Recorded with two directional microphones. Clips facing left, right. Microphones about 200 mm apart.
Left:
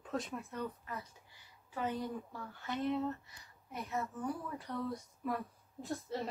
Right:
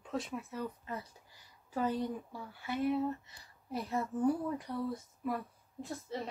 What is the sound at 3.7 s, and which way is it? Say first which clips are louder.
Speech: right 5 dB; 30° right (ahead or behind).